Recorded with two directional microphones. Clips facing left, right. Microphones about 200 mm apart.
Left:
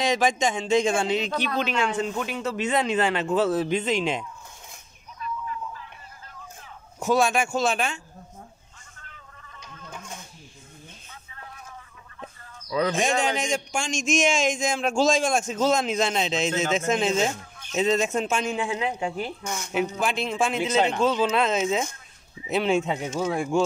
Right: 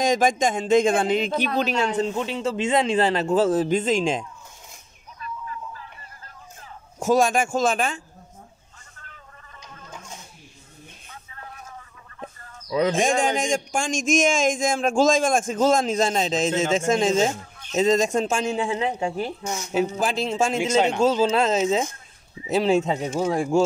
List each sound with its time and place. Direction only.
0.0 s speech: 45° right (ahead or behind)
1.6 s a man's voice: 40° right (ahead or behind)
7.0 s speech: 45° right (ahead or behind)
9.6 s a sound: 60° left (ahead or behind)
12.6 s speech: 20° right (ahead or behind)
12.9 s a man's voice: 50° right (ahead or behind)
21.0 s a man's voice: 30° right (ahead or behind)